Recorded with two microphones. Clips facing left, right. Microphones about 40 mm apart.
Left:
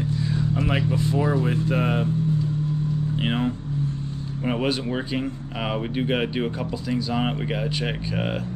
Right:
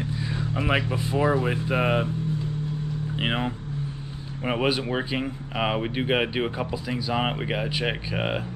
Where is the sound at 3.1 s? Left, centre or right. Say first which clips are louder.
Even; centre.